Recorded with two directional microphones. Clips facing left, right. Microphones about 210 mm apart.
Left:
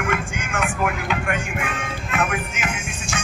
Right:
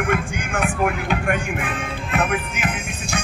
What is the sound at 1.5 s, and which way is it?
Speech, 35° right (ahead or behind).